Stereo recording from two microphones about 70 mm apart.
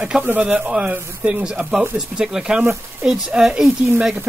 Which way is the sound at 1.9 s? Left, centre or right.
Centre.